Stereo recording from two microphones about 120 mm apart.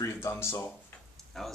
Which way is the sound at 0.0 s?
20° left (ahead or behind).